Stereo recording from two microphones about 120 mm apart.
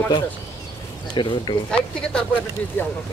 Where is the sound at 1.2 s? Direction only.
40° left (ahead or behind).